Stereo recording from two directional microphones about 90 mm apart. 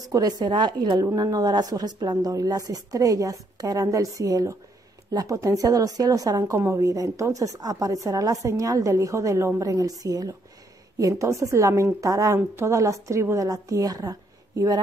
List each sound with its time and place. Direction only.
0.1 s a woman's voice: 50° right (ahead or behind)
6.5 s a woman's voice: 30° right (ahead or behind)